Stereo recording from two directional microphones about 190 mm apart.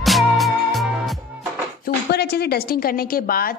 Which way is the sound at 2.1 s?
55° left (ahead or behind).